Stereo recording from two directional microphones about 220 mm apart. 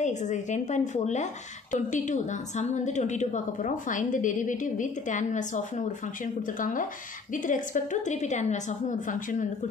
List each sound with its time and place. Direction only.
0.0 s a woman's voice: 35° left (ahead or behind)